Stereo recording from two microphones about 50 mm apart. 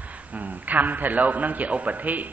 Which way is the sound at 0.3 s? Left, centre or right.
Right.